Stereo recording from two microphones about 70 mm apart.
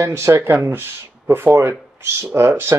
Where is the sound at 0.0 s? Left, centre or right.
Right.